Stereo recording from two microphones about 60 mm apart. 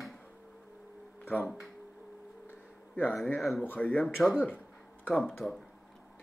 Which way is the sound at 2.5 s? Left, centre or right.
Left.